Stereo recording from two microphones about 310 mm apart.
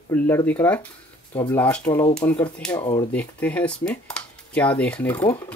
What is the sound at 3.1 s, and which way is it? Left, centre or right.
Speech, centre.